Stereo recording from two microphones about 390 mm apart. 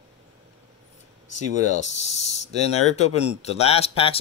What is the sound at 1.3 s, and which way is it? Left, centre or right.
Speech, centre.